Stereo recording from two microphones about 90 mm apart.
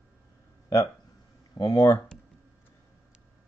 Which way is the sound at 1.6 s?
45° left (ahead or behind).